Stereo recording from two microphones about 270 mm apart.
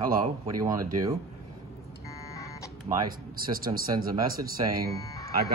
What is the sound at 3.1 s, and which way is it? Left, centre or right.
Speech, right.